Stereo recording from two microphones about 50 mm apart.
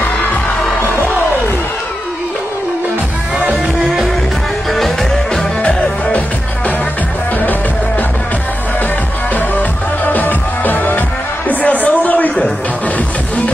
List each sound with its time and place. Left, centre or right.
4.6 s music: centre
5.6 s music: left
10.1 s music: left